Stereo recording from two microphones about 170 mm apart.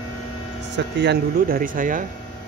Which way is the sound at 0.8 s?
90° right.